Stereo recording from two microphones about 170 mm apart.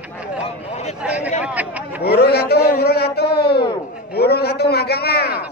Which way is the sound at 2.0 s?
70° left (ahead or behind).